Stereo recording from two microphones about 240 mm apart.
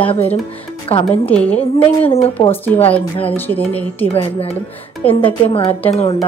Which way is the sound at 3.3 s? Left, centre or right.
Centre.